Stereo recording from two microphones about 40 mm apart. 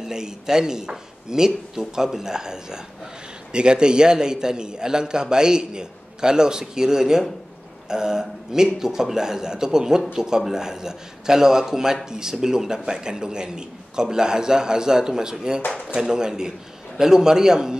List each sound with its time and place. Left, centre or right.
0.0 s a man's voice: centre